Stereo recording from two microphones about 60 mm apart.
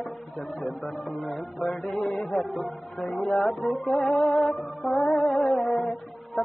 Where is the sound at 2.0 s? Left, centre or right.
Left.